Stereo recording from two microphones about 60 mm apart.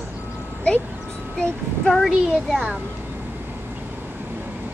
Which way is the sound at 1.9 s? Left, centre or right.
Centre.